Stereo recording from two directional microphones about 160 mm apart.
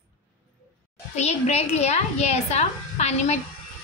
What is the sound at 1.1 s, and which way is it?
A woman's voice, 45° left (ahead or behind).